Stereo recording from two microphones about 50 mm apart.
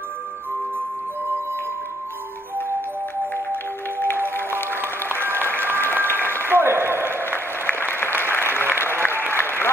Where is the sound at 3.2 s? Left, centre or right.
Left.